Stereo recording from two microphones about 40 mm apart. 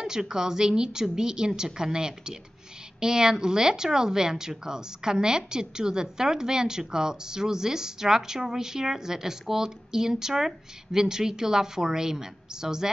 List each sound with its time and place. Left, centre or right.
0.0 s speech: centre